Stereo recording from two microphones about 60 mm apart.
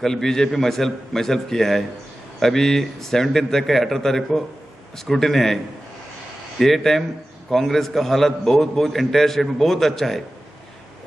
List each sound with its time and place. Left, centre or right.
0.0 s a man's voice: centre
6.6 s a man's voice: centre